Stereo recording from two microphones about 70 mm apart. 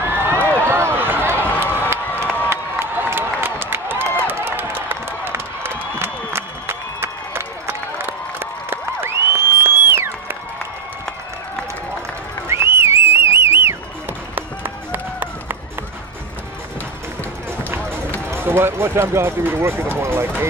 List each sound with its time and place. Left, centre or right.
0.0 s run: right
1.6 s crowd: right
12.4 s a sound: right
14.3 s run: right
18.3 s speech: right